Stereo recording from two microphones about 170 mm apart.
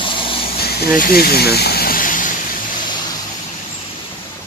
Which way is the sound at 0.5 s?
65° left (ahead or behind).